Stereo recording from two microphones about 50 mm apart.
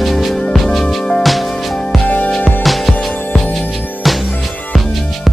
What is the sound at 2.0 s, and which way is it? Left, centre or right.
Music, left.